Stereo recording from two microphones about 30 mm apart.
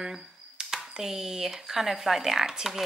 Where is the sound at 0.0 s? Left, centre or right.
Centre.